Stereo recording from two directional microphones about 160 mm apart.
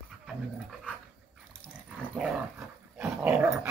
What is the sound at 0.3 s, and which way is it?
Dog, centre (ahead or behind).